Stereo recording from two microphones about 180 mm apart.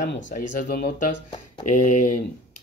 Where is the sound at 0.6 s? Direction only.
50° left (ahead or behind).